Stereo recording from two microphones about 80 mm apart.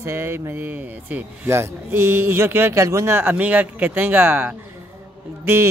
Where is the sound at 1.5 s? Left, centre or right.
Right.